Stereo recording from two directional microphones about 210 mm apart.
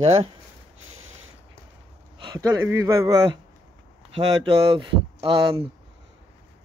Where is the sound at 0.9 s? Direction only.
75° right (ahead or behind).